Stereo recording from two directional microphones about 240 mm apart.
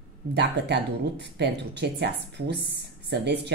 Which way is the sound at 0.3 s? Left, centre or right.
Right.